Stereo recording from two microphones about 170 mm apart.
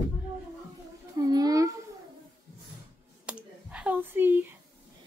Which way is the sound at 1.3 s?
20° right (ahead or behind).